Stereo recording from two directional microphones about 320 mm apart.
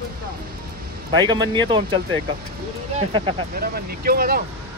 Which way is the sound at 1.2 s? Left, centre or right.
Centre.